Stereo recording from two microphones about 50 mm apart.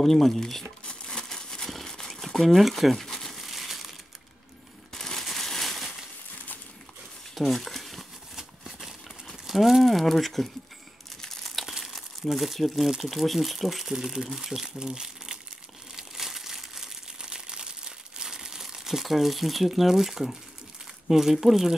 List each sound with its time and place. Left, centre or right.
0.0 s speech: centre
0.8 s a sound: centre
2.0 s crumpling: centre
4.9 s a sound: centre
7.3 s crumpling: centre
9.5 s speech: centre
11.1 s crumpling: centre
11.7 s speech: centre
16.0 s crumpling: centre
21.1 s speech: centre